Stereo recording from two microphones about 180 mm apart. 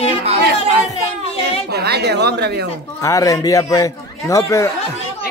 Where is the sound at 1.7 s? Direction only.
65° right (ahead or behind).